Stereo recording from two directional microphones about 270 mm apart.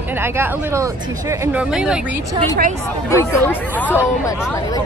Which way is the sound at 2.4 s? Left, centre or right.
Right.